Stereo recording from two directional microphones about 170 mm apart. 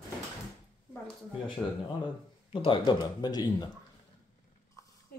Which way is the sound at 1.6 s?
10° left (ahead or behind).